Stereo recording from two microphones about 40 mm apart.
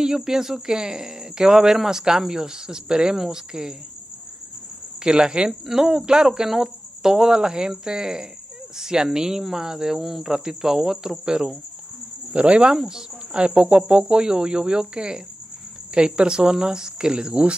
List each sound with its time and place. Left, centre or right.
0.0 s speech: centre
5.0 s speech: centre
5.5 s speech: centre
12.3 s cricket: right
12.7 s speech: centre